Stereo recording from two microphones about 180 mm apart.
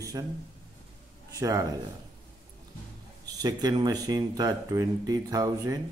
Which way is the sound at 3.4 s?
20° right (ahead or behind).